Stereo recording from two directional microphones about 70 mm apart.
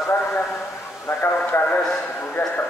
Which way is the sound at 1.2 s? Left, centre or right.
Left.